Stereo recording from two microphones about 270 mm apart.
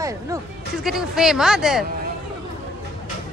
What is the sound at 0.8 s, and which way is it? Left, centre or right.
Speech, centre.